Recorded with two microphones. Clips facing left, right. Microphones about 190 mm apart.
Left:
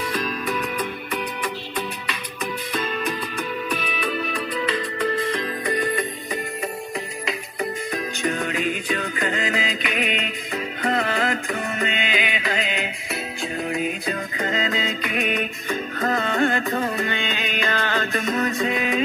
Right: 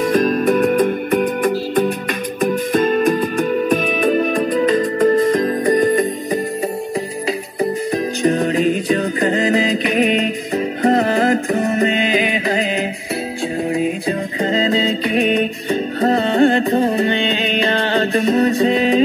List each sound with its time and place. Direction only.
0.0 s music: 50° right (ahead or behind)
7.9 s music: 35° right (ahead or behind)